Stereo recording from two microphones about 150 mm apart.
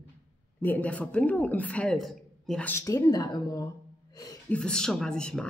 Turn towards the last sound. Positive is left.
turn(degrees=5)  # may be behind; listen again after turning